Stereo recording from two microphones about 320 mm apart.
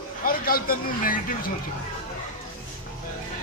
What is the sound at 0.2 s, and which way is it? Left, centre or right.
A man's voice, left.